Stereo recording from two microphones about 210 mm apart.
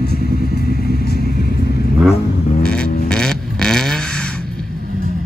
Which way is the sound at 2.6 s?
5° left (ahead or behind).